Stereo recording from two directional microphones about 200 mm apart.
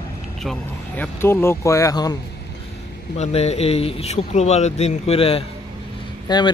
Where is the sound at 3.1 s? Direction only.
35° left (ahead or behind).